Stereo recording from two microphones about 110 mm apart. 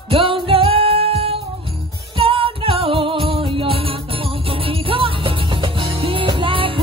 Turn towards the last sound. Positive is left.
turn(degrees=-55)  # may be behind; listen again after turning